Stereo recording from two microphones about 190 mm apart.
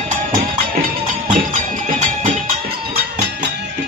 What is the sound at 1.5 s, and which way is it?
Music, 40° right (ahead or behind).